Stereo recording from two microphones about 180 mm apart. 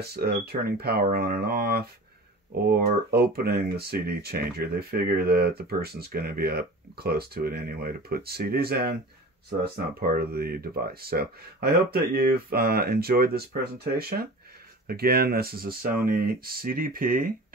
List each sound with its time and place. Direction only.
0.0 s speech: 60° right (ahead or behind)
9.9 s speech: 55° right (ahead or behind)